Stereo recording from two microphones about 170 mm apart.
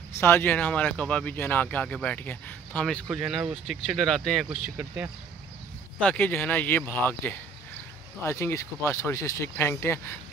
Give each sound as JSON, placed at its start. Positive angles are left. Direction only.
{"t": 0.2, "sound": "speech", "side_deg": 10}
{"t": 3.1, "sound": "speech", "side_deg": -5}
{"t": 4.7, "sound": "speech", "side_deg": -10}
{"t": 5.9, "sound": "speech", "side_deg": 10}